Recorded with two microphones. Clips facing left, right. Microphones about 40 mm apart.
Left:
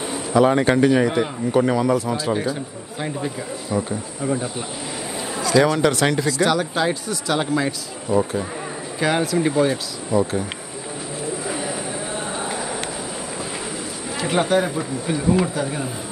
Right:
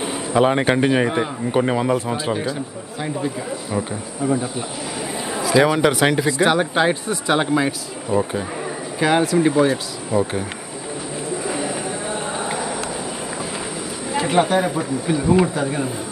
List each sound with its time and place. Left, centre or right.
0.0 s a man's voice: right
4.2 s cricket: centre
5.3 s a man's voice: centre
9.0 s speech: centre
10.1 s speech: right
11.4 s bird: centre
14.2 s speech: centre